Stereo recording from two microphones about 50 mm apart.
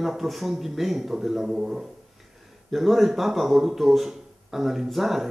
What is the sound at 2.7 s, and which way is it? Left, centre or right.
Speech, centre.